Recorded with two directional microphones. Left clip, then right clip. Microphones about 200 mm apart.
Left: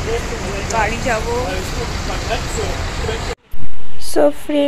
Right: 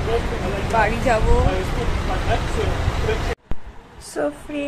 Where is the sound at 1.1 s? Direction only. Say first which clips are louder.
Even; centre (ahead or behind).